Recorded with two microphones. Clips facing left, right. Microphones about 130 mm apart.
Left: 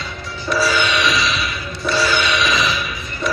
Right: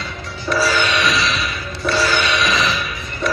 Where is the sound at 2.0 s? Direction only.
10° left (ahead or behind).